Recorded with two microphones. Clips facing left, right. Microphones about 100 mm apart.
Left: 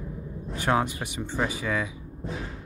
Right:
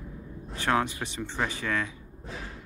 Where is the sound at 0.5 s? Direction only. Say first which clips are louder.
Left 2 dB; 15° left (ahead or behind).